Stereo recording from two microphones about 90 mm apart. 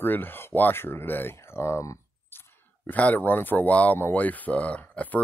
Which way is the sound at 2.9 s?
15° left (ahead or behind).